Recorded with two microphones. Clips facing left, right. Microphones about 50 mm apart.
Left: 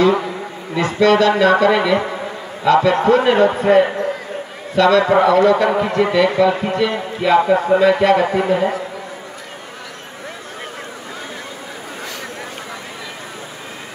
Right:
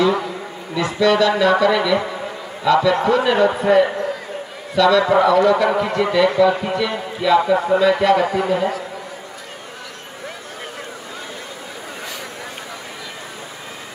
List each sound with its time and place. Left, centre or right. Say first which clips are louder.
0.7 s a man's voice: left 2 dB; left
5.7 s a man's voice: left 2 dB; left